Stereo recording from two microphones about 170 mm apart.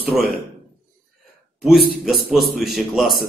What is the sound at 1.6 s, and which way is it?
A man's voice, centre (ahead or behind).